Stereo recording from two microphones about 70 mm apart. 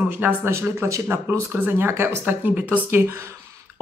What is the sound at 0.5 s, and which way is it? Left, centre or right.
Speech, right.